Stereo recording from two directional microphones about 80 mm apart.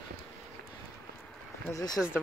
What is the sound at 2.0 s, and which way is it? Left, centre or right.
Speech, centre.